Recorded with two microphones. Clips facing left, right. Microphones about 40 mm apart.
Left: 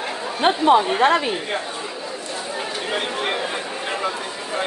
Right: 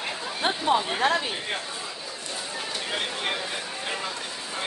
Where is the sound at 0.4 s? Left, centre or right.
Left.